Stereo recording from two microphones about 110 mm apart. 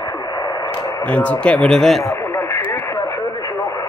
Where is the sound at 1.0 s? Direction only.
10° left (ahead or behind).